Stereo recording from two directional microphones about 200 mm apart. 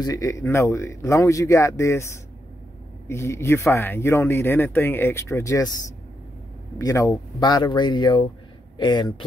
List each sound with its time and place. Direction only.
0.0 s speech: 15° left (ahead or behind)
6.8 s speech: 15° left (ahead or behind)